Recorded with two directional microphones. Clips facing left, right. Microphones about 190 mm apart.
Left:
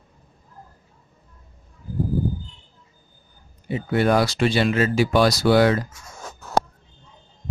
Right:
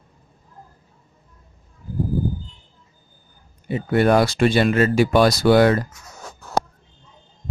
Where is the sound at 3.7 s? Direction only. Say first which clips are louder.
Right 3 dB; 50° right (ahead or behind).